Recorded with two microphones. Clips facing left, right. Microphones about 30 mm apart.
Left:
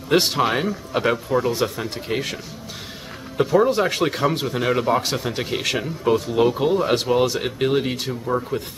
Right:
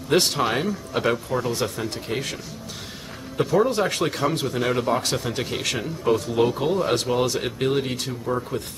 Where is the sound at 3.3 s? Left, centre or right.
Centre.